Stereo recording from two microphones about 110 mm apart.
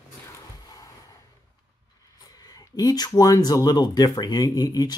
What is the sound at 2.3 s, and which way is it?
Speech, 35° left (ahead or behind).